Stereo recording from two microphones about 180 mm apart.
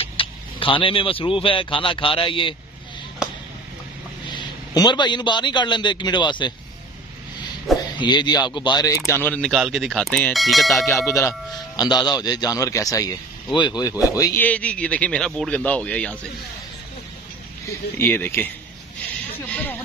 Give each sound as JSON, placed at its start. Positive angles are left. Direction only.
{"t": 0.0, "sound": "speech", "side_deg": 30}
{"t": 4.7, "sound": "a man's voice", "side_deg": 25}
{"t": 7.7, "sound": "a sound", "side_deg": 0}
{"t": 8.0, "sound": "a man's voice", "side_deg": 25}
{"t": 11.1, "sound": "speech", "side_deg": 15}
{"t": 17.9, "sound": "speech", "side_deg": 10}
{"t": 19.5, "sound": "speech", "side_deg": 10}